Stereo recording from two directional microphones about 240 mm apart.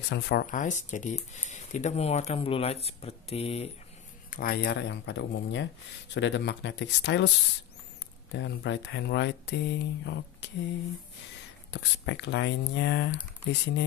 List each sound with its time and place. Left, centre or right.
0.1 s speech: left
4.3 s speech: left
8.3 s speech: left
11.7 s speech: left